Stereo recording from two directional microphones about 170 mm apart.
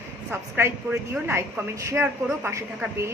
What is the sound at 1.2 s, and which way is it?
A woman's voice, 15° right (ahead or behind).